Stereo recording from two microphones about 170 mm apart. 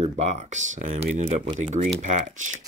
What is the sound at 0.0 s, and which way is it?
Speech, 40° right (ahead or behind).